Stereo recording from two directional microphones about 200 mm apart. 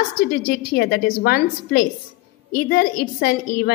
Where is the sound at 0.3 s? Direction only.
50° left (ahead or behind).